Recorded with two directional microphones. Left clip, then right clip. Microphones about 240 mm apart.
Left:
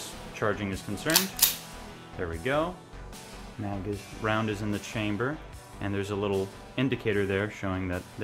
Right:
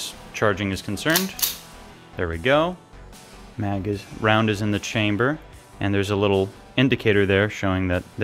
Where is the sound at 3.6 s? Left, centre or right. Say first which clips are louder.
Right 8 dB; right.